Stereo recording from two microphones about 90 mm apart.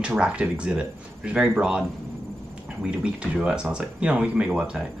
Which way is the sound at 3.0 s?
10° right (ahead or behind).